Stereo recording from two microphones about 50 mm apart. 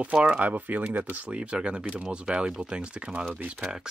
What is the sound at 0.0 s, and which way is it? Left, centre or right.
Speech, right.